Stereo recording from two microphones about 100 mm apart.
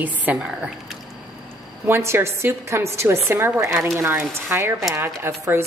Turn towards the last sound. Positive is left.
turn(degrees=-25)  # may be behind; listen again after turning